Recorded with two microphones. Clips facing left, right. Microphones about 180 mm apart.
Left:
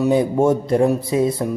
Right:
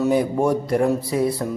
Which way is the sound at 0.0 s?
20° left (ahead or behind).